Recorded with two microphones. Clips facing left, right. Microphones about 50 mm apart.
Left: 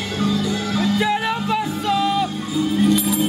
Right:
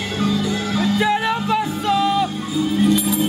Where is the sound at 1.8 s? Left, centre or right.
Right.